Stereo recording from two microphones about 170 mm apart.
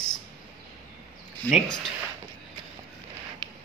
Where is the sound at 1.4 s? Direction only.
10° left (ahead or behind).